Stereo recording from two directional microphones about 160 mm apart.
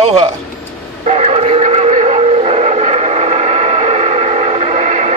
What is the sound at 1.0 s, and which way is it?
Train, 45° right (ahead or behind).